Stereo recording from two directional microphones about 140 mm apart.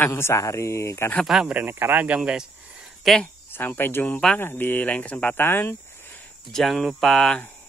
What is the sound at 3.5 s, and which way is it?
Speech, 15° left (ahead or behind).